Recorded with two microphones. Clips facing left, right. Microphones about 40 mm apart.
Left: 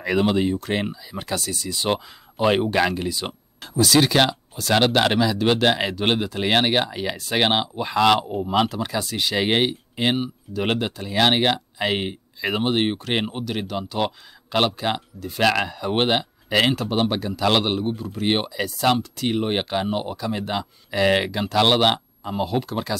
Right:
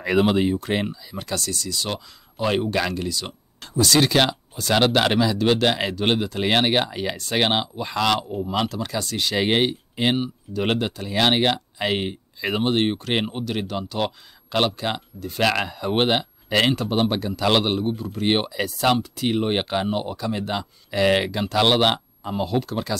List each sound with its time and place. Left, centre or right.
0.0 s speech: centre
0.8 s speech: centre
3.6 s speech: centre